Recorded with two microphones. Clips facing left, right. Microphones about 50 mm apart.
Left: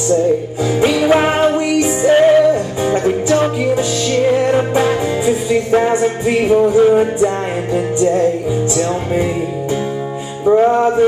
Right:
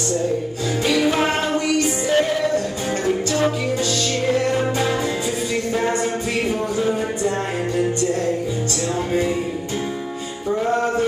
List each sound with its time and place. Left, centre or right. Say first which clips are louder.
0.7 s music: left 7 dB; left
2.0 s music: left 12 dB; left
10.4 s music: left 12 dB; left
10.7 s a sound: left 7 dB; centre